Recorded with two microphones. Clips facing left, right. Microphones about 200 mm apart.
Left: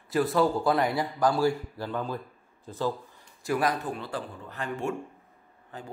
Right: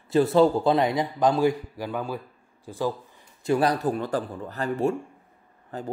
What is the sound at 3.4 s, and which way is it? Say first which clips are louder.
Speech: right 5 dB; 30° right (ahead or behind).